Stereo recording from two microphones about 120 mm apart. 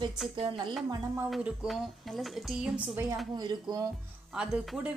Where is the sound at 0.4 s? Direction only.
45° right (ahead or behind).